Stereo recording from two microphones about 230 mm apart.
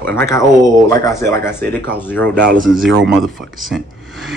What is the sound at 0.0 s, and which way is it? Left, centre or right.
Speech, centre.